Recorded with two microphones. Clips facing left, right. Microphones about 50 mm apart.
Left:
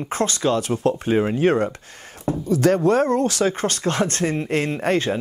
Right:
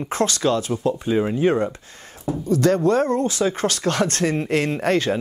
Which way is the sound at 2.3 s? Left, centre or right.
Left.